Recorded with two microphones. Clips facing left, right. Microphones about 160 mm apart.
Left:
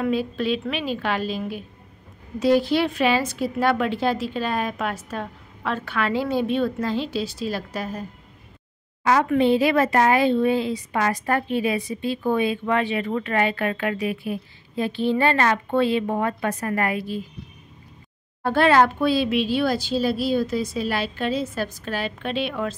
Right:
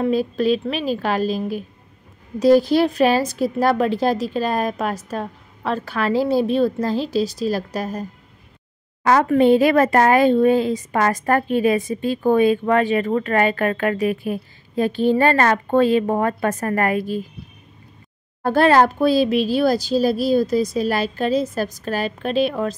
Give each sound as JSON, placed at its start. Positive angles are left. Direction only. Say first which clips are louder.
{"t": 0.0, "sound": "a woman's voice", "louder": "right 4 dB", "side_deg": -40}
{"t": 9.0, "sound": "a woman's voice", "louder": "right 4 dB", "side_deg": -50}
{"t": 18.4, "sound": "a woman's voice", "louder": "right 3 dB", "side_deg": -40}